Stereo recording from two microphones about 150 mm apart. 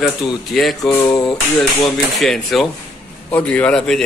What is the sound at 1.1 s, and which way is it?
A man's voice, 5° left (ahead or behind).